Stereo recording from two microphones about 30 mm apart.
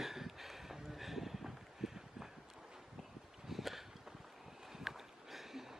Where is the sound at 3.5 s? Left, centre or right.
Centre.